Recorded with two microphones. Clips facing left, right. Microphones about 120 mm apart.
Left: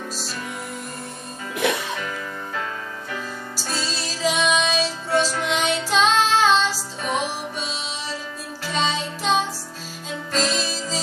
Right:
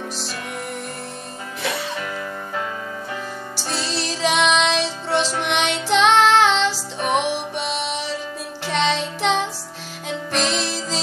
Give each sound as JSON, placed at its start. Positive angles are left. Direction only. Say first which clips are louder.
{"t": 3.7, "sound": "music", "louder": "right 4 dB", "side_deg": -70}